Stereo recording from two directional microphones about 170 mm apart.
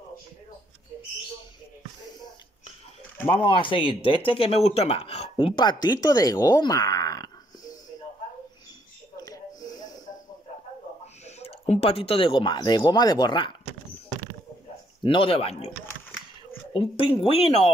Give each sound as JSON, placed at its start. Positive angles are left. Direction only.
{"t": 3.4, "sound": "speech", "side_deg": 30}
{"t": 9.1, "sound": "wheeze", "side_deg": 20}
{"t": 11.2, "sound": "speech", "side_deg": 40}
{"t": 15.0, "sound": "speech", "side_deg": 30}
{"t": 16.7, "sound": "speech", "side_deg": 30}